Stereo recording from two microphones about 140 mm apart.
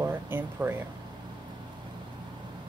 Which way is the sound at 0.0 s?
15° right (ahead or behind).